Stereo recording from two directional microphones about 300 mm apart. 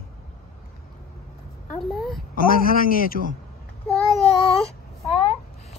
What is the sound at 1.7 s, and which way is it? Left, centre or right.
Speech, centre.